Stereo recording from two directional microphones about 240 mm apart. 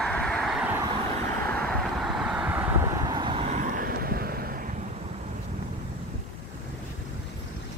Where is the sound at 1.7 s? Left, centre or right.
Centre; by 4.7 s right.